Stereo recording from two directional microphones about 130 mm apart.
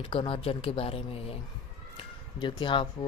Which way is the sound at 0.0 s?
40° left (ahead or behind).